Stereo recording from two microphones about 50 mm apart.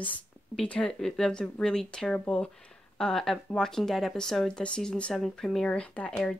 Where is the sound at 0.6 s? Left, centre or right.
Centre.